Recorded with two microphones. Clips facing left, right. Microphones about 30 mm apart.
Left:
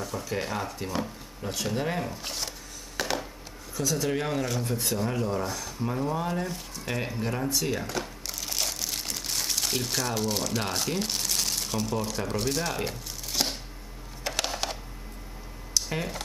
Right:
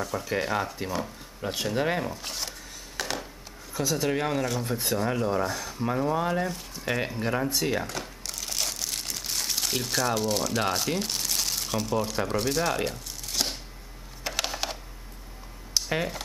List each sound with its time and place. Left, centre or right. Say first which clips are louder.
0.0 s speech: right 3 dB; centre
2.0 s speech: right 1 dB; centre
3.0 s a sound: left 2 dB; centre
3.7 s speech: right 1 dB; centre
7.8 s crumpling: left 2 dB; centre
14.2 s mechanisms: even; centre
15.8 s a sound: even; right